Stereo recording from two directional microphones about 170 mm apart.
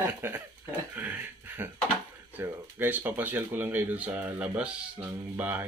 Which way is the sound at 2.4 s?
10° right (ahead or behind).